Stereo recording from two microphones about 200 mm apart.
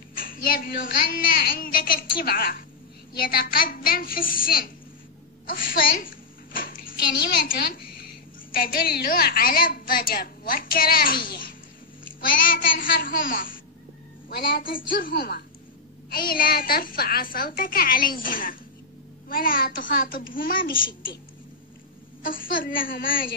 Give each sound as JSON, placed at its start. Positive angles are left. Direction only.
{"t": 0.1, "sound": "a woman's voice", "side_deg": 45}
{"t": 12.2, "sound": "a woman's voice", "side_deg": 45}
{"t": 22.2, "sound": "a woman's voice", "side_deg": 45}